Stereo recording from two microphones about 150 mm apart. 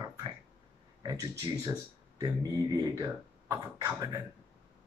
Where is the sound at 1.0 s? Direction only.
25° right (ahead or behind).